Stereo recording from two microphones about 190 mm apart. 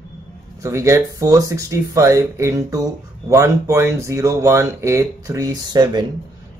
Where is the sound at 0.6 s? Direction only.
15° right (ahead or behind).